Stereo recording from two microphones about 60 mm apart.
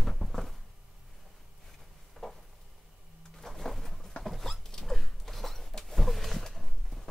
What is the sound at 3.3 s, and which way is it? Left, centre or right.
Printer, centre.